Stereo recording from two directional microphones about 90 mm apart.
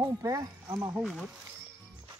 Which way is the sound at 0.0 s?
45° right (ahead or behind).